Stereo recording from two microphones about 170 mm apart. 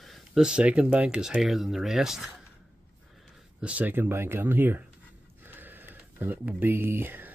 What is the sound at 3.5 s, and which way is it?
Speech, 5° right (ahead or behind).